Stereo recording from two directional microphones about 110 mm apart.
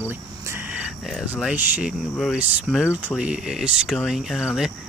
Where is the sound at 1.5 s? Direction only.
10° right (ahead or behind).